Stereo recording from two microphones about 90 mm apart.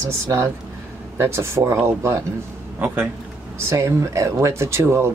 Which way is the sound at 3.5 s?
35° right (ahead or behind).